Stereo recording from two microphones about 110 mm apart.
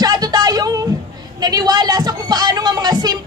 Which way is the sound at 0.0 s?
35° right (ahead or behind).